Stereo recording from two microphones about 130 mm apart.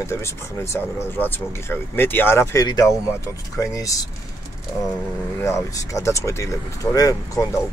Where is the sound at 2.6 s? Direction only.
30° left (ahead or behind).